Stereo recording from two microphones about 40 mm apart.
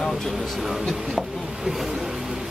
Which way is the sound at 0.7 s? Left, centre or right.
Centre.